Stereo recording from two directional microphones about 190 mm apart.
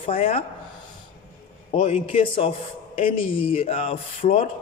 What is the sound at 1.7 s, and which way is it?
A man's voice, 30° left (ahead or behind).